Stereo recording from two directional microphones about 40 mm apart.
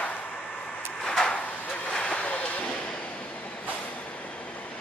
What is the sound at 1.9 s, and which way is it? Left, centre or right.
Vehicle, left.